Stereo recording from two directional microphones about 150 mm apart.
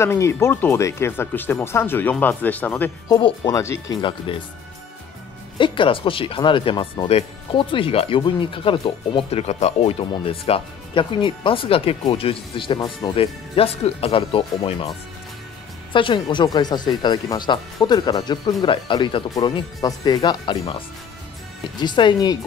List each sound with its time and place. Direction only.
0.0 s speech: 15° left (ahead or behind)
3.1 s speech: 30° left (ahead or behind)
4.3 s speech: 35° left (ahead or behind)
5.6 s speech: 35° left (ahead or behind)
15.9 s speech: 35° left (ahead or behind)